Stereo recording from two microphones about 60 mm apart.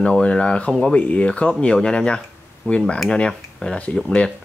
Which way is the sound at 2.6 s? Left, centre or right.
Left.